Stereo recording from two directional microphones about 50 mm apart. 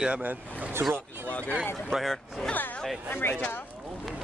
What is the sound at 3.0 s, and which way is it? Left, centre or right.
Speech, left.